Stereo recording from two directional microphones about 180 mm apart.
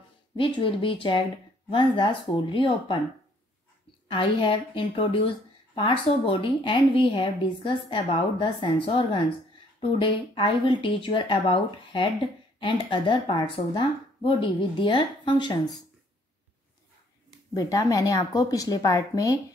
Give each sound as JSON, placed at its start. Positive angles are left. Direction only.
{"t": 0.4, "sound": "a woman's voice", "side_deg": 30}
{"t": 4.1, "sound": "a woman's voice", "side_deg": 30}
{"t": 17.6, "sound": "a woman's voice", "side_deg": 20}